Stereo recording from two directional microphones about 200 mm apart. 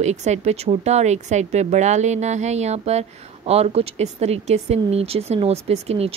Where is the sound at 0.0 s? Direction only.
35° right (ahead or behind).